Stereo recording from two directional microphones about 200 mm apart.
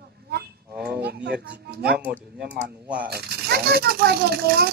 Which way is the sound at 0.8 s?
55° right (ahead or behind).